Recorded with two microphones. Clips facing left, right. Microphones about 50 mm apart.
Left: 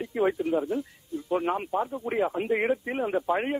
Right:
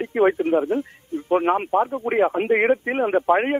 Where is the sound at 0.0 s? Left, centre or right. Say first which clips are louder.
Right 7 dB; right.